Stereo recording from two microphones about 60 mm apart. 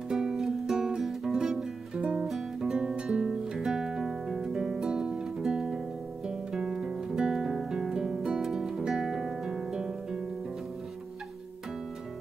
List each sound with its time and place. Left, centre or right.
0.1 s music: centre